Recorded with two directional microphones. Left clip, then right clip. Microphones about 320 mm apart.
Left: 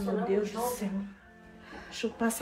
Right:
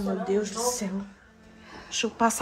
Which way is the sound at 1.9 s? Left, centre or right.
Centre.